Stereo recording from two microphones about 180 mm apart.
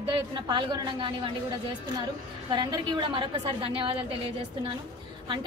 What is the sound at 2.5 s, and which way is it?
A woman's voice, 25° right (ahead or behind).